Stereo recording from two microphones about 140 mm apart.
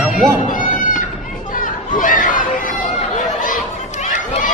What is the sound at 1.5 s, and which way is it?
Chatter, 70° left (ahead or behind).